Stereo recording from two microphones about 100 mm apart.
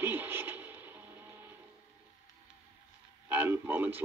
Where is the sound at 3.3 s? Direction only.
20° right (ahead or behind).